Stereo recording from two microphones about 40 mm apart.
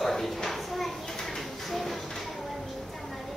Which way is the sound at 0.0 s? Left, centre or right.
Centre.